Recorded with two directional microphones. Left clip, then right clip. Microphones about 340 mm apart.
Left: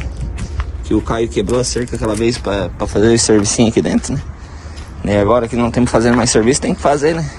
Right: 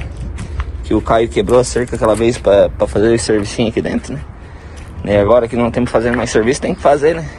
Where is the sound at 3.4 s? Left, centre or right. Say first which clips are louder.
Left 3 dB; left.